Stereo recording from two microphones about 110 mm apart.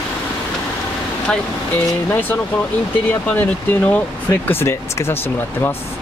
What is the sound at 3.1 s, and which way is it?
Speech, 15° left (ahead or behind).